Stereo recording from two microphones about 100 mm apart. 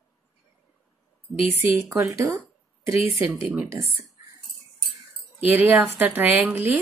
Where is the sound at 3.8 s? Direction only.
30° right (ahead or behind).